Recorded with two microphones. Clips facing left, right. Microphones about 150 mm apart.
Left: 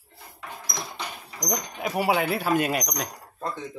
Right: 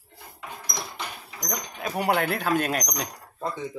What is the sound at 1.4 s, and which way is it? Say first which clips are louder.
Speech: left 3 dB; 15° left (ahead or behind).